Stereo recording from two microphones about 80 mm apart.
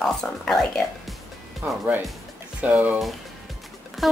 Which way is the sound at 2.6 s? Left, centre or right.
Centre.